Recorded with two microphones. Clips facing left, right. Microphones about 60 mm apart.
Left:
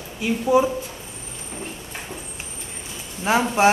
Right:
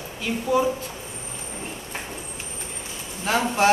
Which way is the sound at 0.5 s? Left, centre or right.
Centre.